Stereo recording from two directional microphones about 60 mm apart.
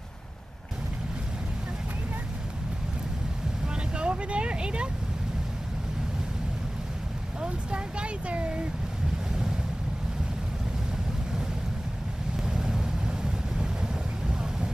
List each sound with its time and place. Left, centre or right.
3.6 s vehicle: centre
7.4 s speech: centre
12.4 s vehicle: centre